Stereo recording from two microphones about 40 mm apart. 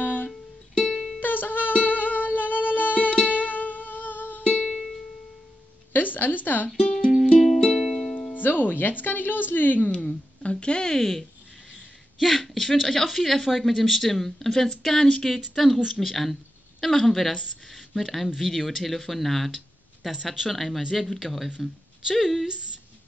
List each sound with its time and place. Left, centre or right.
0.0 s music: left
0.8 s music: centre
1.2 s music: left
4.6 s music: centre
5.9 s a woman's voice: left
6.8 s music: left
7.6 s music: centre
8.3 s speech: left
9.8 s speech: left
12.2 s speech: centre
21.5 s speech: centre
22.2 s speech: centre